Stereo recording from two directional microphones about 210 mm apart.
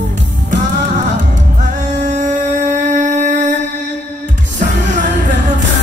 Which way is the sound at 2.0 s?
35° right (ahead or behind).